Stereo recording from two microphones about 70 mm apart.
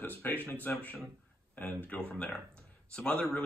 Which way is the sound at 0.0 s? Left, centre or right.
Left.